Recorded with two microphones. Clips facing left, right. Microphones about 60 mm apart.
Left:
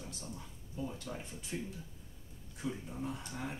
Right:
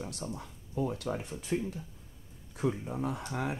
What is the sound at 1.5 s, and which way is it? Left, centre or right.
Speech, right.